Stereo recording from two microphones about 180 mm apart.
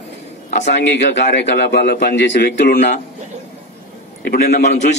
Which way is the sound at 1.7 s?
60° left (ahead or behind).